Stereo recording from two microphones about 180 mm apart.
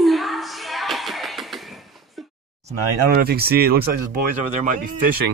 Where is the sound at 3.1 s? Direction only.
55° right (ahead or behind).